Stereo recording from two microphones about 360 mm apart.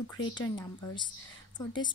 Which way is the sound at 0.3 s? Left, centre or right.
Centre.